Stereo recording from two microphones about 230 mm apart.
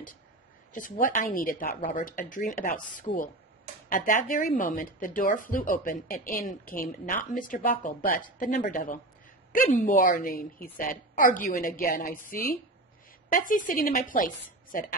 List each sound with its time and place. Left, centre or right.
0.7 s speech: left